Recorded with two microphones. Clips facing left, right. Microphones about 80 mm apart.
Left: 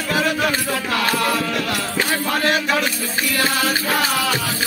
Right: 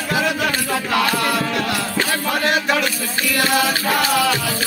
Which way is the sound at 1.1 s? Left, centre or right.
Centre.